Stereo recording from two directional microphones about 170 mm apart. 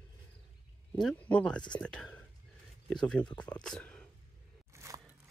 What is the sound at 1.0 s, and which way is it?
Speech, 5° left (ahead or behind).